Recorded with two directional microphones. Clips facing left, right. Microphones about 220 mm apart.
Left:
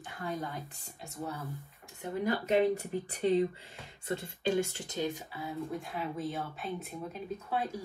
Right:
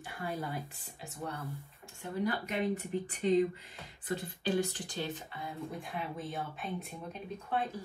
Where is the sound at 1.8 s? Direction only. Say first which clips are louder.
Left 1 dB; 25° left (ahead or behind); by 6.9 s centre (ahead or behind).